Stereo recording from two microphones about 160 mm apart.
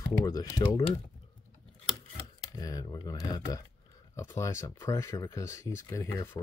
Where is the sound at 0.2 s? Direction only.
25° left (ahead or behind).